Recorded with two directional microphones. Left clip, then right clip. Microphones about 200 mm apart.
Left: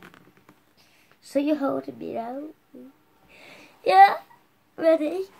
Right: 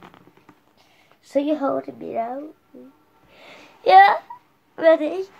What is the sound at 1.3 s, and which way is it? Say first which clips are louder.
A woman's voice: right 3 dB; 20° left (ahead or behind).